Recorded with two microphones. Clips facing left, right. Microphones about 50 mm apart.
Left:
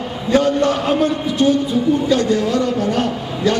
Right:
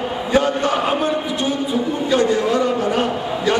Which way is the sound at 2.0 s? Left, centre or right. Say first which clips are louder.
Even; centre.